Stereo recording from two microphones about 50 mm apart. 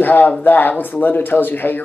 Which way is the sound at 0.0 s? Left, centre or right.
Left.